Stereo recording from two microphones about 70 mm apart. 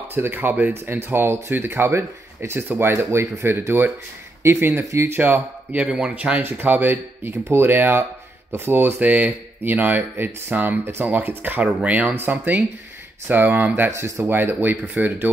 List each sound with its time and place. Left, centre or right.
0.1 s speech: right
13.8 s speech: right
14.2 s speech: right